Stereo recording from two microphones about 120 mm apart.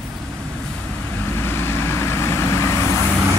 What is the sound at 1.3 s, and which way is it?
Vehicle, 20° left (ahead or behind).